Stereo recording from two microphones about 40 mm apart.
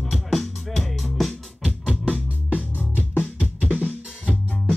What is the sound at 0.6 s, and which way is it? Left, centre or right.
Music, centre.